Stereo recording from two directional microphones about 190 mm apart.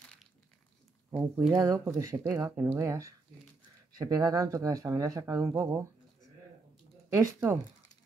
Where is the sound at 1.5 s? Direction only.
20° right (ahead or behind).